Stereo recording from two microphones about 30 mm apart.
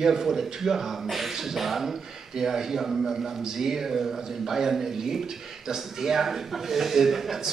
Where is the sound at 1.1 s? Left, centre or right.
Centre.